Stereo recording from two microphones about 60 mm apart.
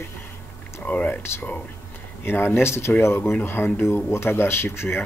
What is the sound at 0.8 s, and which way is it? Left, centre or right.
Speech, left.